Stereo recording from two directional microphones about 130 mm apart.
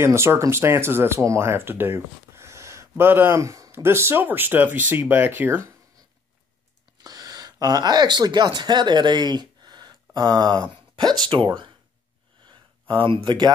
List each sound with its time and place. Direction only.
0.0 s speech: 20° right (ahead or behind)
7.0 s speech: 30° right (ahead or behind)
12.4 s a sound: 40° right (ahead or behind)